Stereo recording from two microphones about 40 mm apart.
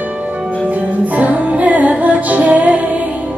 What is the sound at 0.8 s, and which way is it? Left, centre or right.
Music, right.